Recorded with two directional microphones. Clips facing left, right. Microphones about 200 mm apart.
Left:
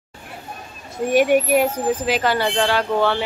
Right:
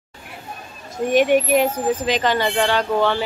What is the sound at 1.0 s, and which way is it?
Speech, 10° left (ahead or behind).